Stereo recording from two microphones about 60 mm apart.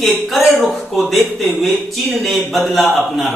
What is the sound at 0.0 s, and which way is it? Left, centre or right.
Speech, centre.